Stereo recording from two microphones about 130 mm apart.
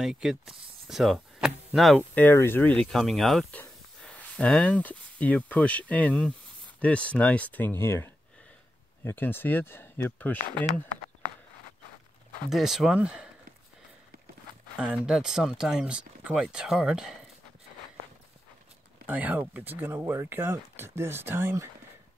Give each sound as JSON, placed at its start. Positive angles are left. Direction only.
{"t": 0.0, "sound": "speech", "side_deg": -5}
{"t": 2.1, "sound": "speech", "side_deg": 15}
{"t": 12.4, "sound": "speech", "side_deg": 0}
{"t": 14.8, "sound": "speech", "side_deg": -5}
{"t": 19.0, "sound": "speech", "side_deg": -10}